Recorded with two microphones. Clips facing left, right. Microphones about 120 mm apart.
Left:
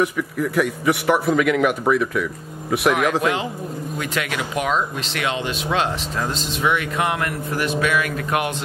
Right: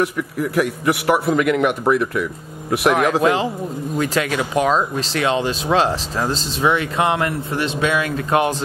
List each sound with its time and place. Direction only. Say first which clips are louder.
0.0 s a man's voice: even; centre (ahead or behind)
2.9 s speech: right 4 dB; 35° right (ahead or behind)